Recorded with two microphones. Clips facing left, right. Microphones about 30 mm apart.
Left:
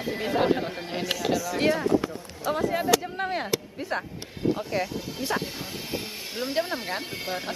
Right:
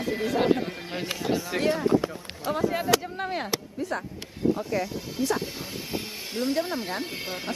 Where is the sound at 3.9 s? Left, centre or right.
Left.